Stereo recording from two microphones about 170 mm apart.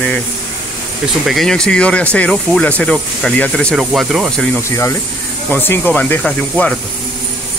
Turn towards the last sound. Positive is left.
turn(degrees=5)  # may be behind; listen again after turning